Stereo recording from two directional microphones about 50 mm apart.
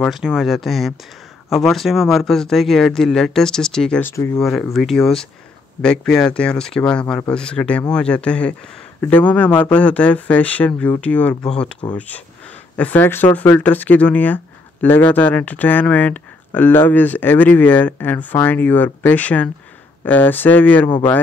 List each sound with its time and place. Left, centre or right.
0.2 s speech: centre
5.8 s speech: centre
11.4 s speech: centre
12.7 s speech: left
13.0 s speech: left